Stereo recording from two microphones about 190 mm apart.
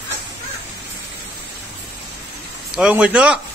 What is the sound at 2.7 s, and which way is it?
Speech, 5° right (ahead or behind).